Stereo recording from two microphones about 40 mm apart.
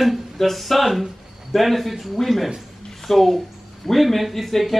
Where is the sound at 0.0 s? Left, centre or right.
Centre.